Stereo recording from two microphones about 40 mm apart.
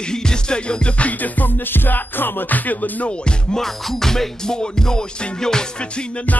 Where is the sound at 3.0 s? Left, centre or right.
Left.